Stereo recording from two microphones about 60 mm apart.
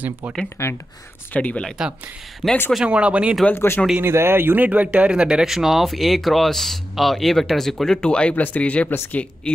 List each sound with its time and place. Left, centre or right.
0.6 s speech: left
1.3 s speech: left
1.8 s speech: centre
2.8 s speech: right
3.5 s speech: left
4.0 s speech: right
4.6 s speech: right; by 8.8 s left
8.8 s speech: left
9.1 s speech: centre